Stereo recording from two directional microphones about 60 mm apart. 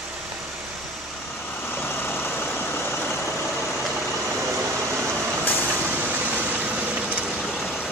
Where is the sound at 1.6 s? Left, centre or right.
Left.